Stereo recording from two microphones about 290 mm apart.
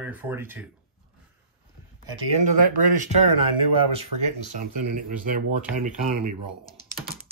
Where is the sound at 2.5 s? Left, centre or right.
Right.